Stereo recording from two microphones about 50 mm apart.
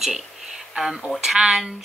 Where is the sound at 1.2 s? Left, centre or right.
Centre.